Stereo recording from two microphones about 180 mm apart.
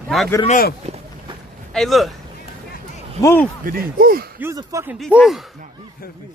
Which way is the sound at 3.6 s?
55° right (ahead or behind).